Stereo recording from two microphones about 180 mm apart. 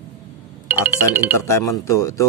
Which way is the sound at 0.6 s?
10° right (ahead or behind).